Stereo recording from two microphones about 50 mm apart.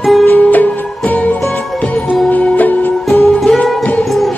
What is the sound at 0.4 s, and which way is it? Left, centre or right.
Music, left.